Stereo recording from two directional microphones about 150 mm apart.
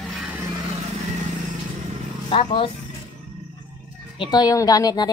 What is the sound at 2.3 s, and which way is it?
Speech, 35° left (ahead or behind).